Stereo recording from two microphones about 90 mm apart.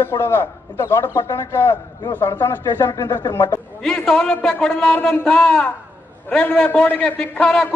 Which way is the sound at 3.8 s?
5° left (ahead or behind).